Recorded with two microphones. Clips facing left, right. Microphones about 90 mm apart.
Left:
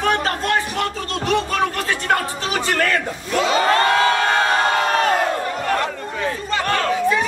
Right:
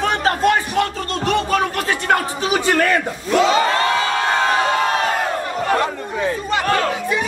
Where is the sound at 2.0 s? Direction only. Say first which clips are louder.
Right 3 dB; 10° right (ahead or behind).